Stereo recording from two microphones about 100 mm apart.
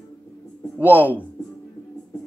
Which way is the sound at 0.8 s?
15° right (ahead or behind).